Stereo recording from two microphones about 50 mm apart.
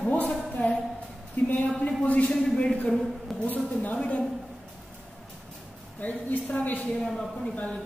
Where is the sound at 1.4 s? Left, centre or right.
Left.